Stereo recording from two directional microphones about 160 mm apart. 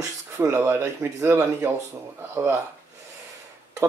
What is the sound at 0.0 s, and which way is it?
Speech, 15° right (ahead or behind).